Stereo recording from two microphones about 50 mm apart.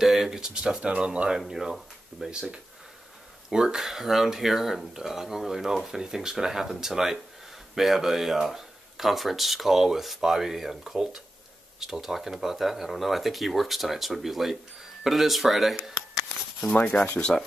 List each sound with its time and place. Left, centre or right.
0.0 s speech: centre
1.5 s speech: centre
3.4 s speech: centre
16.9 s sanding: centre
17.3 s speech: centre